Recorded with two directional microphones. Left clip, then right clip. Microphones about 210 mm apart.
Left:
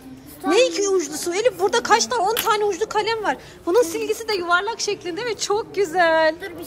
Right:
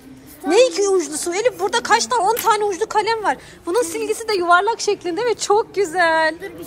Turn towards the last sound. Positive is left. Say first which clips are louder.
# right 1 dB
turn(degrees=15)  # may be behind; listen again after turning